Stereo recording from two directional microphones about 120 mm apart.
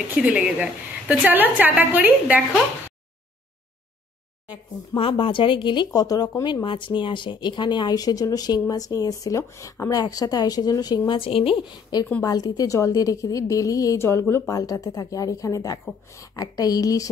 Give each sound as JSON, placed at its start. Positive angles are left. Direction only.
{"t": 0.1, "sound": "a woman's voice", "side_deg": -10}
{"t": 4.9, "sound": "speech", "side_deg": 50}
{"t": 11.1, "sound": "a woman's voice", "side_deg": 50}
{"t": 12.2, "sound": "a woman's voice", "side_deg": 35}